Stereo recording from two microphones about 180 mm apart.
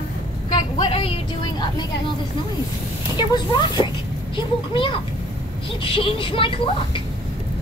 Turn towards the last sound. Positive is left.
turn(degrees=30)  # may be behind; listen again after turning